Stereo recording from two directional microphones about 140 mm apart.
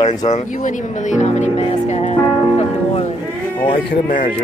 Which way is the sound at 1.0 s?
55° left (ahead or behind).